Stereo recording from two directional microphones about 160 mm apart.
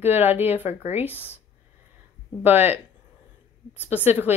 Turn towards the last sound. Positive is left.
turn(degrees=-10)  # may be behind; listen again after turning